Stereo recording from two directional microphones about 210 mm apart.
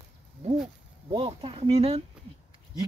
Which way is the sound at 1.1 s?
25° right (ahead or behind).